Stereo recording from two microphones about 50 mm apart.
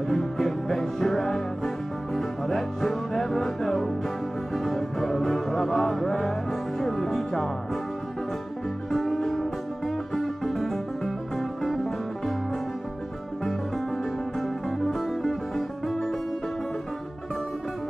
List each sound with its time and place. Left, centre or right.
0.1 s music: centre
8.9 s music: centre
13.4 s music: centre